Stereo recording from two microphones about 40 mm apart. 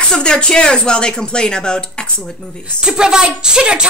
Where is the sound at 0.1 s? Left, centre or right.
Left.